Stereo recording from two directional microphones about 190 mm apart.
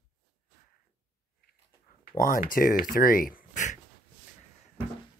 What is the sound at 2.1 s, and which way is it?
Speech, 45° left (ahead or behind).